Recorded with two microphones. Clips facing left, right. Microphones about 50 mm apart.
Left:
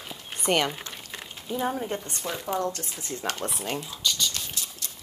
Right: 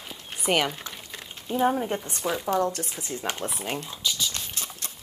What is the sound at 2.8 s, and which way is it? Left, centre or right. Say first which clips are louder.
Speech: right 4 dB; right.